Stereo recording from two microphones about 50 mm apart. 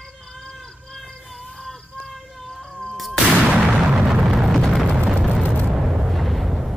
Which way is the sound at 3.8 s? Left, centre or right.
Centre.